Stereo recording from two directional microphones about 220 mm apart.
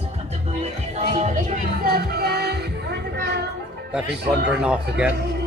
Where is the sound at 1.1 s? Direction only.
35° right (ahead or behind).